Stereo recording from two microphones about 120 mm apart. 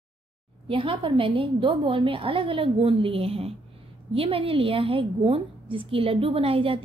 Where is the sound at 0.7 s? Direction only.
45° right (ahead or behind).